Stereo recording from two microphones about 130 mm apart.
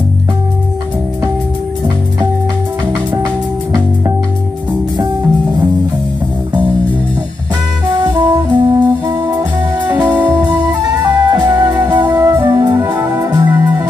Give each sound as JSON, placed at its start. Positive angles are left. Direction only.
{"t": 8.0, "sound": "brass instrument", "side_deg": -30}
{"t": 10.3, "sound": "music", "side_deg": -30}